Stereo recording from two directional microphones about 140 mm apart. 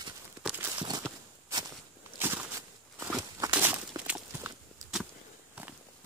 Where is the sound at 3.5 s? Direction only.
15° right (ahead or behind).